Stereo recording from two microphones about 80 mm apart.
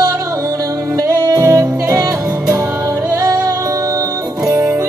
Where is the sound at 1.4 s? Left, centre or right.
Right.